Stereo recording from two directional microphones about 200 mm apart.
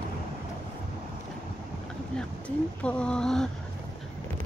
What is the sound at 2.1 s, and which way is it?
Speech, 5° left (ahead or behind).